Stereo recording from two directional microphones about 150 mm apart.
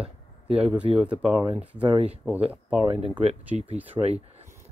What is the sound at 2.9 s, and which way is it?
Speech, 40° right (ahead or behind).